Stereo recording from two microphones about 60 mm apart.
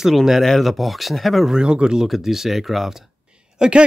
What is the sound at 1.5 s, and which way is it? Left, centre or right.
Speech, centre.